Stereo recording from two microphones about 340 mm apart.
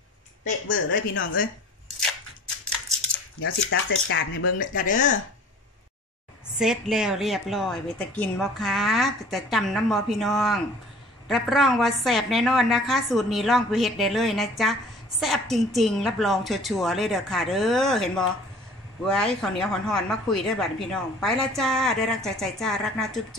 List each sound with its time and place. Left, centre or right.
0.5 s speech: left
3.3 s speech: left
4.6 s speech: left
6.6 s a woman's voice: centre